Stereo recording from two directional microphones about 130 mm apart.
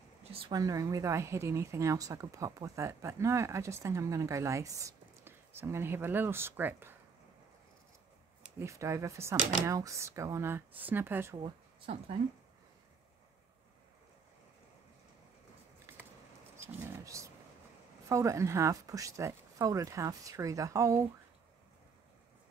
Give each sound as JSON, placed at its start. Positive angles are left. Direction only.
{"t": 0.2, "sound": "a sound", "side_deg": -45}
{"t": 0.5, "sound": "speech", "side_deg": -30}
{"t": 8.5, "sound": "speech", "side_deg": -20}
{"t": 11.3, "sound": "speech", "side_deg": -45}
{"t": 16.6, "sound": "a sound", "side_deg": -25}
{"t": 18.0, "sound": "speech", "side_deg": -25}